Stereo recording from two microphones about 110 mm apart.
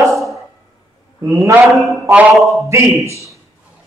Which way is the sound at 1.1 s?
30° right (ahead or behind).